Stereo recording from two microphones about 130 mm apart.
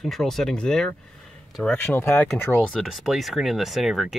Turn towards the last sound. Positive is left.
turn(degrees=-5)  # may be behind; listen again after turning